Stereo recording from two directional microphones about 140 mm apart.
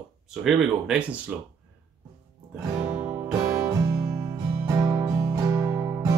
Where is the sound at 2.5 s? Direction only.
20° right (ahead or behind).